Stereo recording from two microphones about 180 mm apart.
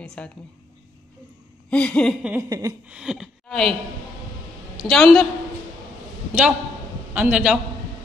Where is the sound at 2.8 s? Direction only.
5° right (ahead or behind).